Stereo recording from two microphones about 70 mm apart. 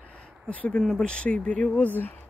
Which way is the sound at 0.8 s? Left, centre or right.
Centre.